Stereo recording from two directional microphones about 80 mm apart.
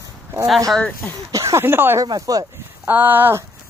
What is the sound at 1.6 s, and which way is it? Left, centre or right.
Speech, right.